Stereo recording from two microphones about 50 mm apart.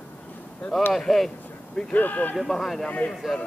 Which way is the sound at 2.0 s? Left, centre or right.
Left.